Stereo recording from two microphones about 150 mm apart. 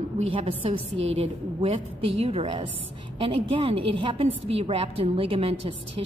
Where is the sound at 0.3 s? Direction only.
40° right (ahead or behind).